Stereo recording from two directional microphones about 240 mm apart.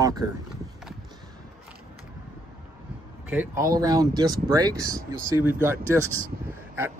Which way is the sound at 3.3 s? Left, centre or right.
Centre.